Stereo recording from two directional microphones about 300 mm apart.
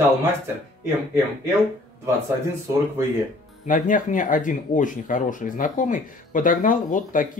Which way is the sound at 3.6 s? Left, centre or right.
Left.